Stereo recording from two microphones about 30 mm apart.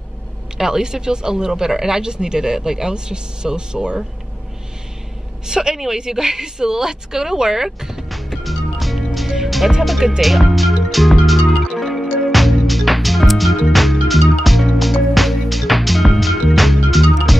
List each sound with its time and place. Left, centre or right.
0.6 s speech: centre
5.5 s a woman's voice: centre
8.5 s music: centre